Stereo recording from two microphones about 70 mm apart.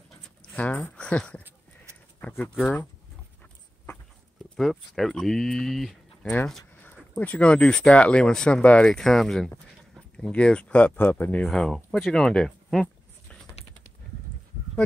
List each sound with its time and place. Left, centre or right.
0.6 s speech: left
4.6 s speech: centre
7.2 s speech: centre
11.4 s speech: centre